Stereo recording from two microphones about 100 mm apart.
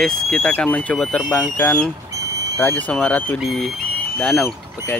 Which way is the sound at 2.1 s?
30° right (ahead or behind).